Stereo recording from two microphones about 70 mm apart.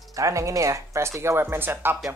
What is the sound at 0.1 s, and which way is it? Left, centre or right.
Speech, right.